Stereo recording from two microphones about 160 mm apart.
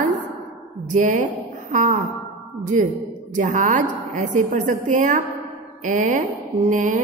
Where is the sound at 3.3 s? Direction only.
50° right (ahead or behind).